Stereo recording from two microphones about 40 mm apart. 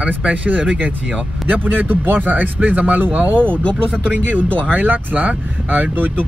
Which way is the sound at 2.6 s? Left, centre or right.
Right.